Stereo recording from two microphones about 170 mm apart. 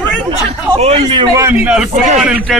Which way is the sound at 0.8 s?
35° right (ahead or behind).